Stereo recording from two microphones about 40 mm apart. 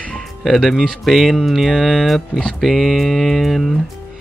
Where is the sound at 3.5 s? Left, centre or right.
Centre.